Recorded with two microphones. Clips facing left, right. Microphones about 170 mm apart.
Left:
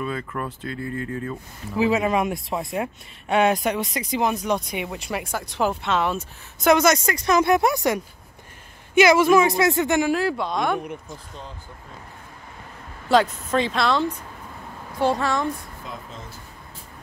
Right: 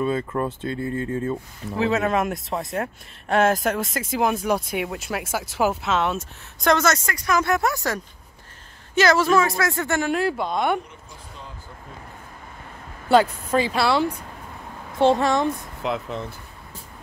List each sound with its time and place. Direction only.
0.0 s speech: 30° right (ahead or behind)
1.9 s speech: 10° left (ahead or behind)
2.1 s speech: centre (ahead or behind)
10.1 s speech: centre (ahead or behind)
13.1 s speech: 5° right (ahead or behind)
15.0 s speech: 25° right (ahead or behind)
15.8 s speech: 70° right (ahead or behind)